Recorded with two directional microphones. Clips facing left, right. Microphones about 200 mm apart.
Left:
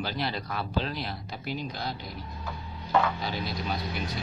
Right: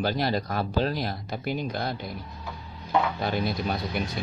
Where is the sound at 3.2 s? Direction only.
50° right (ahead or behind).